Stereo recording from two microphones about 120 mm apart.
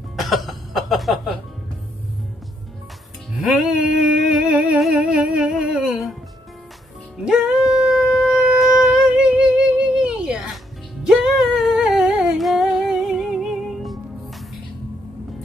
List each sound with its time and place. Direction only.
0.1 s cough: centre (ahead or behind)
3.3 s music: 5° right (ahead or behind)
4.9 s humming: 10° right (ahead or behind)
7.2 s shofar: 5° right (ahead or behind)
11.1 s humming: centre (ahead or behind)